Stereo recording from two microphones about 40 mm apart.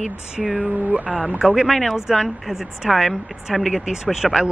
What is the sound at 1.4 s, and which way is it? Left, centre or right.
Speech, centre.